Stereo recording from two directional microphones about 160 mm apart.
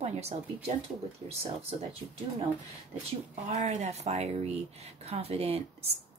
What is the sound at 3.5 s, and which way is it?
Speech, 45° right (ahead or behind).